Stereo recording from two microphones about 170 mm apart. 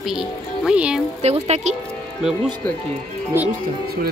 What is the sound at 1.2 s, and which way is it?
Speech, 40° right (ahead or behind).